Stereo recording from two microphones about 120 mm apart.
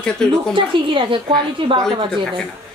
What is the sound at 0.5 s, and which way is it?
A woman's voice, 45° right (ahead or behind).